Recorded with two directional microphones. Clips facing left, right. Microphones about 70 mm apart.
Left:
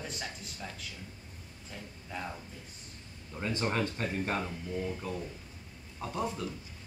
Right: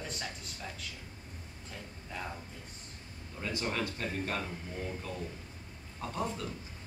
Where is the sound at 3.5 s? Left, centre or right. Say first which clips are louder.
Left 3 dB; left.